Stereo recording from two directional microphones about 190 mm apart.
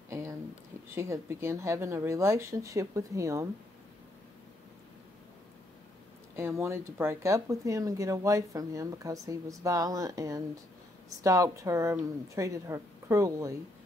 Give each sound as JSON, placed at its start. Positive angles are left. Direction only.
{"t": 0.1, "sound": "a sound", "side_deg": -15}
{"t": 0.9, "sound": "speech", "side_deg": -15}
{"t": 6.3, "sound": "speech", "side_deg": -15}